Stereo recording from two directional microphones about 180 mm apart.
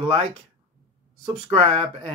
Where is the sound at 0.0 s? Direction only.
30° right (ahead or behind).